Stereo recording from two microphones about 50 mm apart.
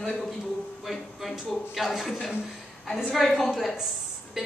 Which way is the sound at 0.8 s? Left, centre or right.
Centre.